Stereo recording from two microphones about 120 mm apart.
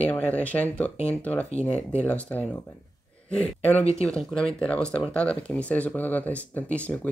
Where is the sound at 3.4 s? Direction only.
15° left (ahead or behind).